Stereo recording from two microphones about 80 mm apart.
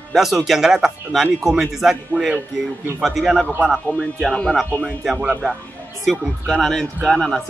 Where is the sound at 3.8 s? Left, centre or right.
Centre.